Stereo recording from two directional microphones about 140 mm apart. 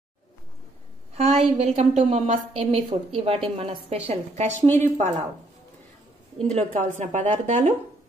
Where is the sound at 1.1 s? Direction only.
50° right (ahead or behind).